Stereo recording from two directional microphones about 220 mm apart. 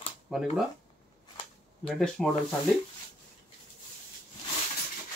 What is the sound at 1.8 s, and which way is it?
Speech, 5° left (ahead or behind).